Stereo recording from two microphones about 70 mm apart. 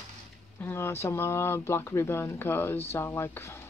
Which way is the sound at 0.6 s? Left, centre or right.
Left.